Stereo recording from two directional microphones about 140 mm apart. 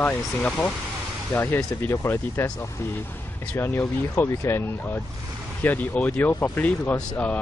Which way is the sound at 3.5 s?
20° left (ahead or behind).